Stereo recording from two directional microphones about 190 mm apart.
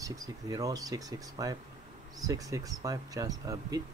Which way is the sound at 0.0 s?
20° right (ahead or behind).